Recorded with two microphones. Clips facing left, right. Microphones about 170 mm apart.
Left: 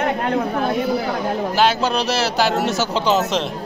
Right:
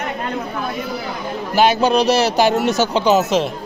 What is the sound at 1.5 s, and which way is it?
Speech, 15° right (ahead or behind).